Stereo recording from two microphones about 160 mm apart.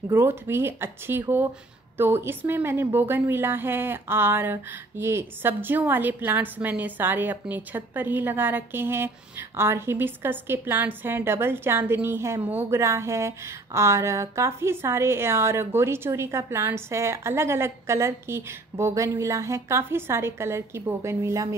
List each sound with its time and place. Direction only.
0.1 s a woman's voice: 15° right (ahead or behind)